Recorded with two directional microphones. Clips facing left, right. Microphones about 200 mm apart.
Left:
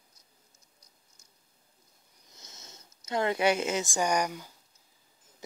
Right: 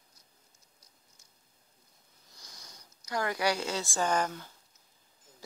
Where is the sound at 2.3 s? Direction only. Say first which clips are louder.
Left 2 dB; 25° left (ahead or behind).